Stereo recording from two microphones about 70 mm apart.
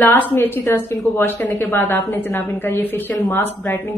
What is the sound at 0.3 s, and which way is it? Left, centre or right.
A woman's voice, left.